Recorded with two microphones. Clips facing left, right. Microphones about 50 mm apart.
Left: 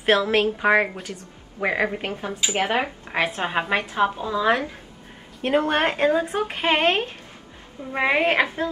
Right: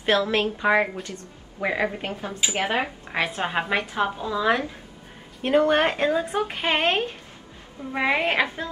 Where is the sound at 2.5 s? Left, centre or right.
Left.